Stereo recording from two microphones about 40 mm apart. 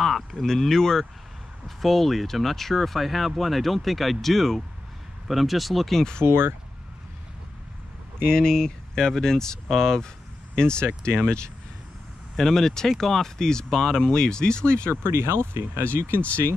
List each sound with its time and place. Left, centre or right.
0.0 s a sound: centre
0.5 s speech: centre
5.9 s speech: centre
6.2 s speech: right
8.3 s speech: centre
12.4 s speech: centre
14.9 s speech: right